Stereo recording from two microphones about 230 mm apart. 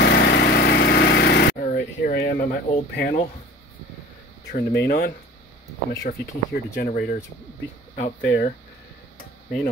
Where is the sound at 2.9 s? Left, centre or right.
Left.